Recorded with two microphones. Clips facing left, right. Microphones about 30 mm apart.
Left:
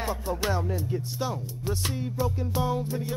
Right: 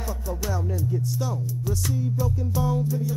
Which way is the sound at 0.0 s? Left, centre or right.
Left.